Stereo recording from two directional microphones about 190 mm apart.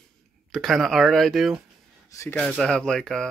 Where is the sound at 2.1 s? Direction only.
15° left (ahead or behind).